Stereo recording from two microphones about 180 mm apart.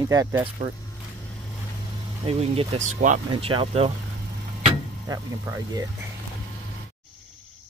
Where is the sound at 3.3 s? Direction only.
30° right (ahead or behind).